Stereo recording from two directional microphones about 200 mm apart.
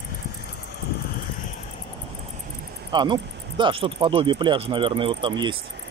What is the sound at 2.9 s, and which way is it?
Speech, 20° right (ahead or behind).